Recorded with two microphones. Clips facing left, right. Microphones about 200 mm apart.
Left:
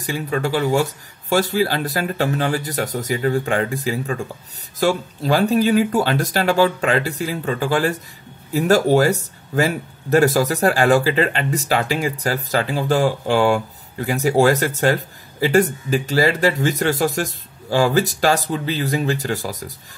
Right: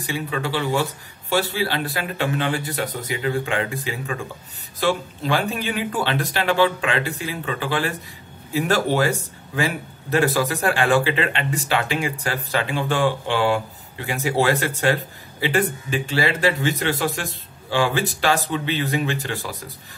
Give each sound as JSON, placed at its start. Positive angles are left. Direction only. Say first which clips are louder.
{"t": 0.0, "sound": "speech", "louder": "left 4 dB", "side_deg": 45}